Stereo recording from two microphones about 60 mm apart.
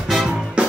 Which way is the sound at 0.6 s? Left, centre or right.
Centre.